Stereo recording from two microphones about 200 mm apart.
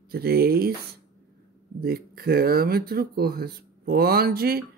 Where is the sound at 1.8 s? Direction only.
50° right (ahead or behind).